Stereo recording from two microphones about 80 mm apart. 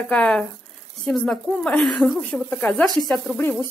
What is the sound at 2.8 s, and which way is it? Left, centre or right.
Speech, centre.